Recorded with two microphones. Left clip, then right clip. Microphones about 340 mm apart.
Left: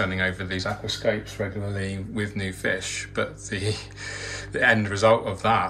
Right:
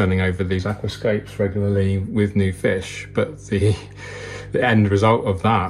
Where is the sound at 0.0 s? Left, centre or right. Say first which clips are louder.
Right 4 dB; centre.